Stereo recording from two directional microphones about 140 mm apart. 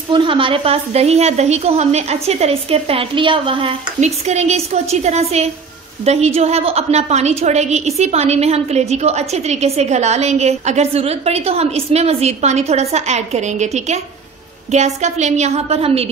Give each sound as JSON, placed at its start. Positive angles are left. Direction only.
{"t": 0.1, "sound": "a woman's voice", "side_deg": -35}
{"t": 4.0, "sound": "a woman's voice", "side_deg": -55}